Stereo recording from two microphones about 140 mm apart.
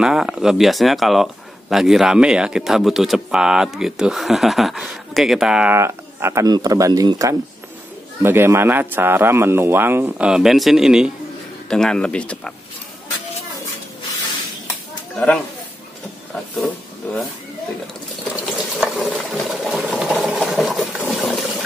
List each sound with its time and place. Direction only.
0.0 s speech: 5° right (ahead or behind)
5.8 s speech: 20° right (ahead or behind); by 12.5 s 10° left (ahead or behind)
15.1 s speech: 5° left (ahead or behind)
16.5 s speech: centre (ahead or behind)
18.3 s water: centre (ahead or behind)
21.1 s a sound: centre (ahead or behind)